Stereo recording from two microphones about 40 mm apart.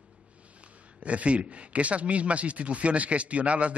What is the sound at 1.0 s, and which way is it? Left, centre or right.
A man's voice, right.